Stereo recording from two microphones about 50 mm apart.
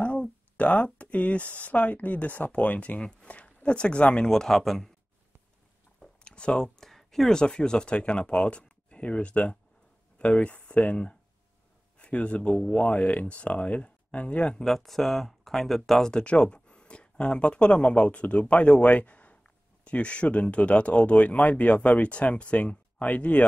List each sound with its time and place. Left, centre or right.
0.6 s speech: left
3.0 s speech: centre
4.3 s speech: centre
5.9 s chewing: left
6.2 s a sound: left
6.8 s speech: centre; by 14.5 s left
14.5 s speech: centre
16.1 s speech: left